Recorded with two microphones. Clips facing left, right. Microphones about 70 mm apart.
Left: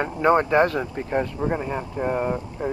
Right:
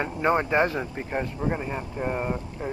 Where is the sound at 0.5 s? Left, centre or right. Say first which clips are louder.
Left 4 dB; left.